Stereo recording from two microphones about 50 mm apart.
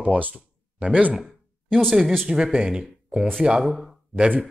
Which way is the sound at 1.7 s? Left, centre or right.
Centre.